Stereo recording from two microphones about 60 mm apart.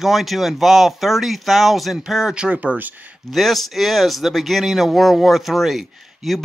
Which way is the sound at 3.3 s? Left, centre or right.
Centre.